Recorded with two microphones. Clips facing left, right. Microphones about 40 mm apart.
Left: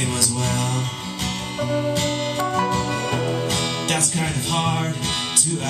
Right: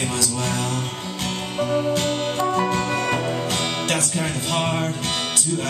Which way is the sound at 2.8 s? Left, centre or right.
Right.